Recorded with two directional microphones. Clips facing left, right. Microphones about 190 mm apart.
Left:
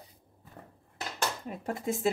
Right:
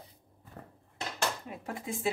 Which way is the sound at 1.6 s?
40° left (ahead or behind).